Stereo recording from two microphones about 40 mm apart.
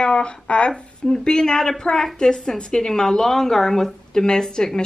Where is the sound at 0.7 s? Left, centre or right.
Centre.